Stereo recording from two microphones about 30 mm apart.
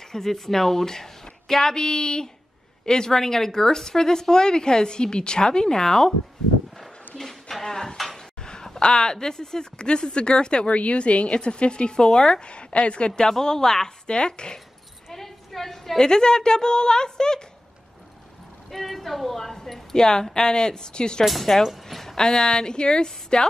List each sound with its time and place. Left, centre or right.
0.0 s speech: centre
7.2 s a sound: centre
7.7 s speech: left
8.2 s a sound: left
8.8 s speech: left
10.7 s a woman's voice: left
13.3 s speech: centre
14.0 s a woman's voice: left
15.0 s a sound: centre
16.0 s speech: left
18.7 s speech: centre
21.8 s a sound: centre
22.1 s speech: left